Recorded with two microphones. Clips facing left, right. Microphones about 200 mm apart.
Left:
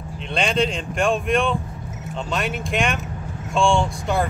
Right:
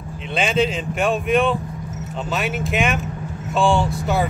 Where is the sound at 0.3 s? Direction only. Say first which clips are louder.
Right 2 dB; 5° right (ahead or behind).